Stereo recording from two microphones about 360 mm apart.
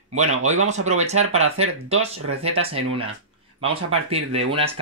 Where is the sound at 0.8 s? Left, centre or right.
Centre.